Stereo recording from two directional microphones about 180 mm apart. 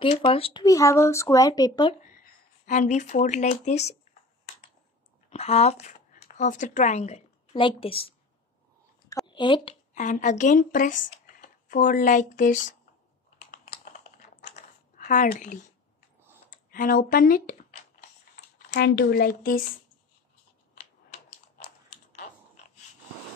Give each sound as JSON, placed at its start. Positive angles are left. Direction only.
{"t": 0.0, "sound": "speech", "side_deg": 30}
{"t": 2.6, "sound": "speech", "side_deg": 45}
{"t": 5.3, "sound": "speech", "side_deg": 35}
{"t": 9.1, "sound": "speech", "side_deg": 25}
{"t": 9.9, "sound": "speech", "side_deg": 45}
{"t": 13.5, "sound": "computer keyboard", "side_deg": 45}
{"t": 18.7, "sound": "speech", "side_deg": 60}